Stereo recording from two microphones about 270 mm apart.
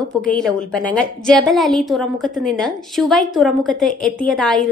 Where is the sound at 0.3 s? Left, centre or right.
Centre.